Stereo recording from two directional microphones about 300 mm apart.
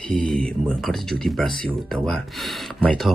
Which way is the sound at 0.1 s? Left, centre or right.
Centre.